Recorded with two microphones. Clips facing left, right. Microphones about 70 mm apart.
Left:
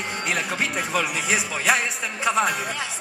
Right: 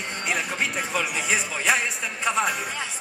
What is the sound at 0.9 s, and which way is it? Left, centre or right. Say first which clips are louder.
Music: left 2 dB; centre.